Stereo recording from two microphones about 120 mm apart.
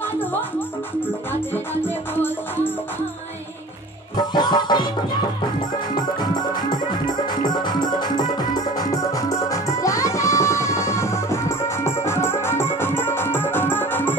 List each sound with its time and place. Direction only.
2.1 s music: 15° left (ahead or behind)
4.3 s music: 40° left (ahead or behind)
7.4 s music: 40° left (ahead or behind); by 14.1 s 15° left (ahead or behind)